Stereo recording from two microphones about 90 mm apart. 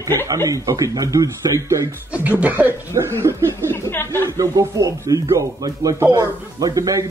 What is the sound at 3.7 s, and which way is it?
Speech, 25° left (ahead or behind).